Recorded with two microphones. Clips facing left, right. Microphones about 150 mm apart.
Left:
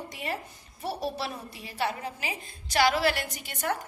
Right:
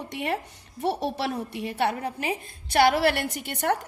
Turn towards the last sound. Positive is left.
turn(degrees=-60)  # may be behind; listen again after turning